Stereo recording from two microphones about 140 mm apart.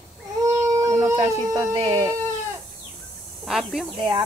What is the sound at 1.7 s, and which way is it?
Speech, 40° right (ahead or behind).